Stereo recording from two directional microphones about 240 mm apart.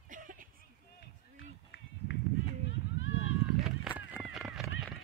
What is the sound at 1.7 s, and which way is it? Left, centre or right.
Run, left.